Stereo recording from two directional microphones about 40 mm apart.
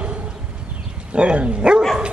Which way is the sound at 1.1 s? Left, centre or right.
Right.